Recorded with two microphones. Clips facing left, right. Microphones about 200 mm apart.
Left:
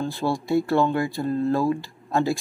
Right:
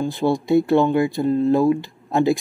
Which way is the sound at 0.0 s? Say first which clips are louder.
Right 5 dB; 20° right (ahead or behind).